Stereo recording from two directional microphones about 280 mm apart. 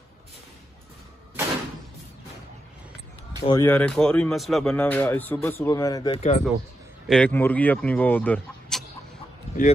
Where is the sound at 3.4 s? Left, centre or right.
Centre.